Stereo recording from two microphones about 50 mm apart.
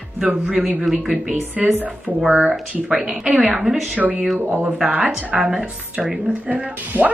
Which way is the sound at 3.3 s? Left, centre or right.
Right.